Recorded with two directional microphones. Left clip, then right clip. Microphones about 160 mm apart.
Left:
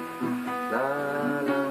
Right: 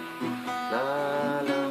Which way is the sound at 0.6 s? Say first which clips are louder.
Even; 30° right (ahead or behind).